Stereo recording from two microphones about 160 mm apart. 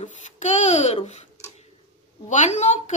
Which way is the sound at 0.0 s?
45° left (ahead or behind).